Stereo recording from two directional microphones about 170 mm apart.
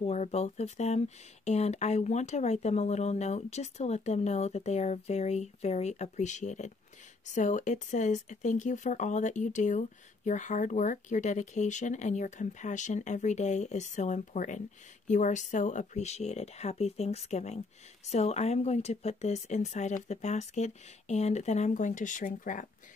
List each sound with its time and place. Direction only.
0.0 s speech: 40° left (ahead or behind)